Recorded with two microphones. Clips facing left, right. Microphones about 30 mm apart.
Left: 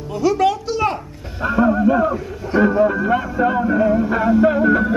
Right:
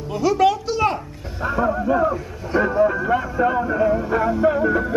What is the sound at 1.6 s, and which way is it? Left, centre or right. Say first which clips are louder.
Music: left 4 dB; centre.